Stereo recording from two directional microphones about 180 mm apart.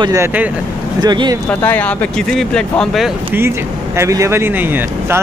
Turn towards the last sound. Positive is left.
turn(degrees=-10)  # may be behind; listen again after turning